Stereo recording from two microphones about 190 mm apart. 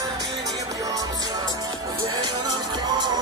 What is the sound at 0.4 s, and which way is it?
Music, 20° right (ahead or behind).